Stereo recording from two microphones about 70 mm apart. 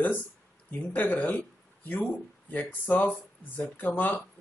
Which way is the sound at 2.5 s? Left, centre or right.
Left.